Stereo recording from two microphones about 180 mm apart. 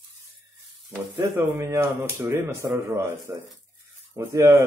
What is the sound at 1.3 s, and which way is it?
Speech, 15° right (ahead or behind).